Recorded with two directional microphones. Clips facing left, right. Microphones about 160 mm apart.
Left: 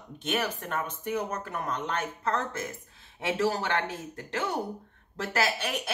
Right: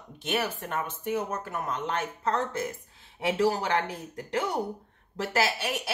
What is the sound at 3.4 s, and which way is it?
A woman's voice, 15° right (ahead or behind).